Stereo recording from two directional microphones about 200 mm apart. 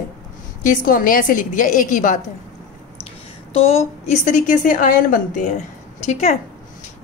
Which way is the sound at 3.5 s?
30° left (ahead or behind).